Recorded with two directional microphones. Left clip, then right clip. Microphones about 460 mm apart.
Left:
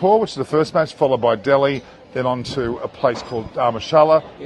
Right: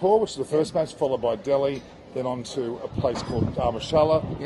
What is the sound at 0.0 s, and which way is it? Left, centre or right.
Speech, left.